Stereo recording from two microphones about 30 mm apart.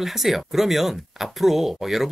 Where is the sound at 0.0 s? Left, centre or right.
Centre.